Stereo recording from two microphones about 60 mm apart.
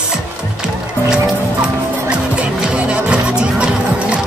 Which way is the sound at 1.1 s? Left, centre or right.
Centre.